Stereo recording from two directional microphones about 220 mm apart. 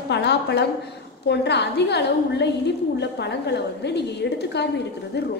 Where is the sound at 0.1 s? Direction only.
50° left (ahead or behind).